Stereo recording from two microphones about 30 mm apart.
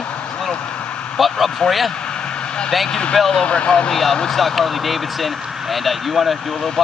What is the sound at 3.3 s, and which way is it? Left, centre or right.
Speech, left.